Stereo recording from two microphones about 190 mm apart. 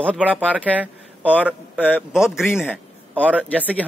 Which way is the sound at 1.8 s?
10° left (ahead or behind).